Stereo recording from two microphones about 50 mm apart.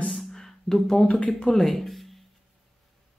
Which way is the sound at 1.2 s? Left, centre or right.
Centre.